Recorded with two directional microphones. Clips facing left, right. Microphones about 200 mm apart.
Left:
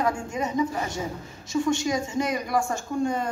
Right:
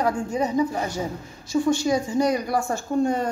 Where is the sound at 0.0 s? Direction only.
35° right (ahead or behind).